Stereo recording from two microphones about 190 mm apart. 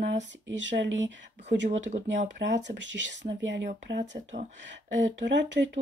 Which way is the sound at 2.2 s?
70° right (ahead or behind).